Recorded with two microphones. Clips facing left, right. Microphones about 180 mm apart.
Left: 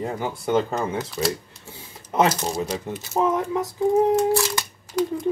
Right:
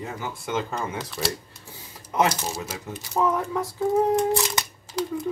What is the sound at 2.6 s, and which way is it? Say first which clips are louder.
Speech: left 7 dB; 30° left (ahead or behind).